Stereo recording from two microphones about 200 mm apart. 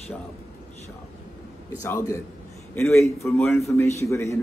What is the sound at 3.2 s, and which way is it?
A man's voice, 15° left (ahead or behind).